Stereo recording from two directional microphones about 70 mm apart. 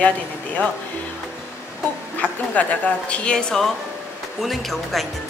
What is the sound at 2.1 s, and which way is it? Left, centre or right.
A woman's voice, left.